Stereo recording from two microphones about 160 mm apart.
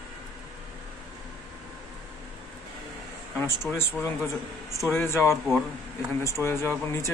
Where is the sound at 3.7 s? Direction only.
5° left (ahead or behind).